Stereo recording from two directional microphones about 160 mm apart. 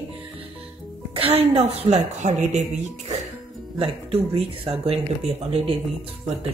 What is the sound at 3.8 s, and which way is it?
Speech, 35° right (ahead or behind).